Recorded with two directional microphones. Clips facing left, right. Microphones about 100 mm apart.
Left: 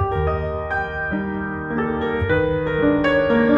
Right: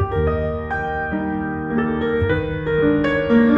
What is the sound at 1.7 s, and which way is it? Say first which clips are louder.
Music: right 1 dB; 25° left (ahead or behind).